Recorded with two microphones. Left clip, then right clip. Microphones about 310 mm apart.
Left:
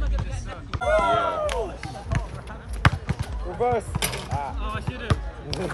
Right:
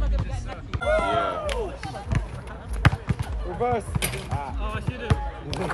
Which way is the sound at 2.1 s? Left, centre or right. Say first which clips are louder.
Left 4 dB; left.